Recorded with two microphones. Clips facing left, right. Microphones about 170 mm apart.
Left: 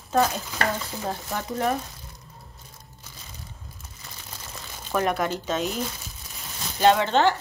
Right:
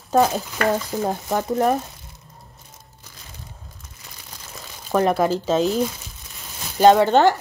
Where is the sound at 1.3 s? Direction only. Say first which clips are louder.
Right 6 dB; 40° right (ahead or behind).